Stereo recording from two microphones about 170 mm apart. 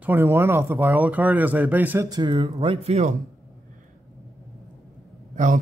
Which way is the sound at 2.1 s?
25° right (ahead or behind).